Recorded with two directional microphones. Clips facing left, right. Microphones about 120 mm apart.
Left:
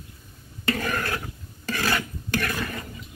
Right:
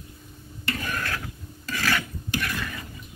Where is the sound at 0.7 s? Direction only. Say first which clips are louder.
Left 2 dB; 55° left (ahead or behind).